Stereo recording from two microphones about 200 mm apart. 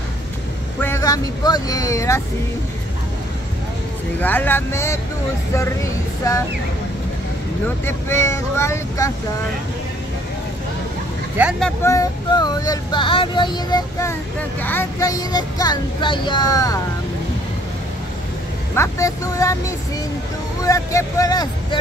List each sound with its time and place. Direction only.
0.7 s speech: 10° left (ahead or behind)
4.2 s speech: 10° left (ahead or behind)
6.2 s speech: 15° left (ahead or behind)
7.6 s speech: 10° left (ahead or behind)
11.6 s a sound: 15° left (ahead or behind)
18.8 s speech: 15° left (ahead or behind)
20.6 s speech: 15° left (ahead or behind)